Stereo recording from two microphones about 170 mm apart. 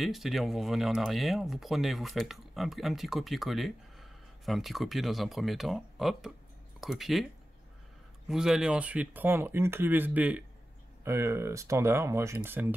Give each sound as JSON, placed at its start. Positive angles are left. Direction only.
{"t": 0.0, "sound": "speech", "side_deg": 0}
{"t": 8.3, "sound": "speech", "side_deg": -5}